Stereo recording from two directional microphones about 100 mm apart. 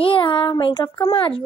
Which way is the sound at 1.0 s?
65° left (ahead or behind).